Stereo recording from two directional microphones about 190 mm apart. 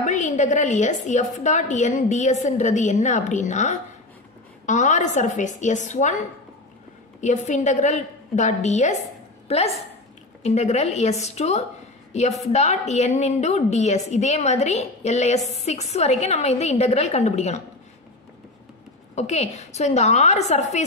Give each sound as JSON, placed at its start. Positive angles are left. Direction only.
{"t": 0.0, "sound": "a woman's voice", "side_deg": 40}
{"t": 19.1, "sound": "a woman's voice", "side_deg": 35}